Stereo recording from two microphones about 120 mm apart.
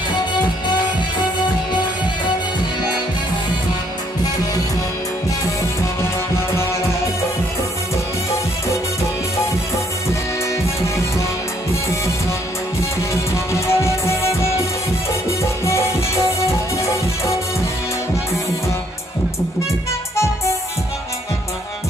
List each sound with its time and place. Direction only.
13.1 s music: 25° left (ahead or behind)